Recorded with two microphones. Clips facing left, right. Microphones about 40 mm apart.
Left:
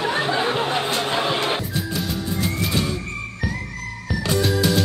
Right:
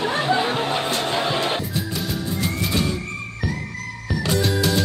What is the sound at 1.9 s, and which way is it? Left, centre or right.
Music, centre.